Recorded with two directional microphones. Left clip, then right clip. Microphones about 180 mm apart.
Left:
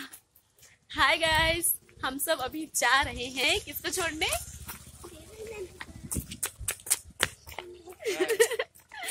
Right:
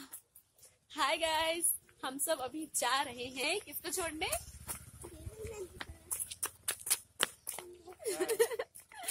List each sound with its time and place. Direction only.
0.8 s a woman's voice: centre (ahead or behind)
5.8 s horse: 20° right (ahead or behind)
6.2 s a sound: 5° right (ahead or behind)